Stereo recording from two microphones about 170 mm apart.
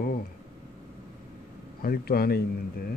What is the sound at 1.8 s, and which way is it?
Speech, 65° left (ahead or behind).